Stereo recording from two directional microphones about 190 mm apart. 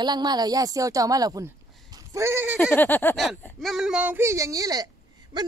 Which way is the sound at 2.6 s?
10° left (ahead or behind).